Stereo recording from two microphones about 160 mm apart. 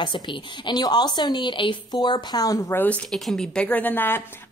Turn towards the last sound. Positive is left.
turn(degrees=10)  # may be behind; listen again after turning